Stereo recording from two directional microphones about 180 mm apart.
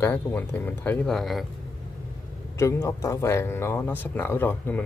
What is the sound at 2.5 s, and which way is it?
A man's voice, 15° left (ahead or behind).